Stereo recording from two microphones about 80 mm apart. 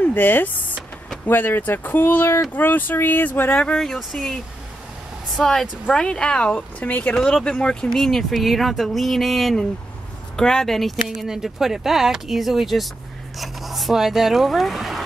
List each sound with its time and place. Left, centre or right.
0.0 s speech: left
3.6 s speech: centre